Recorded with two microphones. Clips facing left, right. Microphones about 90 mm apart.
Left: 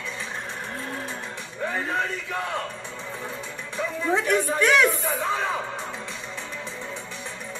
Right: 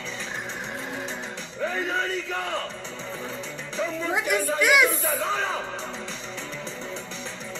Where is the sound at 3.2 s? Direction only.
55° left (ahead or behind).